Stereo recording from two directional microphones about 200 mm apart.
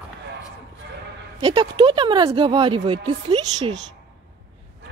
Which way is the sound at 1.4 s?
20° right (ahead or behind).